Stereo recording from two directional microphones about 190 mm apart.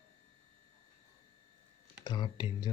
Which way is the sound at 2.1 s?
25° left (ahead or behind).